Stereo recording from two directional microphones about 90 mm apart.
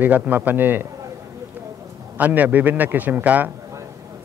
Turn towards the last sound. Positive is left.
turn(degrees=-20)  # may be behind; listen again after turning